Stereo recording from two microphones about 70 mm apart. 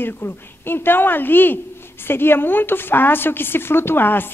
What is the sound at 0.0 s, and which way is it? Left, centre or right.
A woman's voice, left.